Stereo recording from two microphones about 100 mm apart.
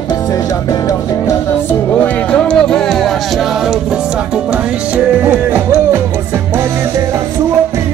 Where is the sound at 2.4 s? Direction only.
5° left (ahead or behind).